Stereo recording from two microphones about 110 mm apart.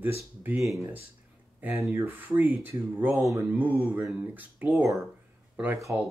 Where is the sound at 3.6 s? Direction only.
15° right (ahead or behind).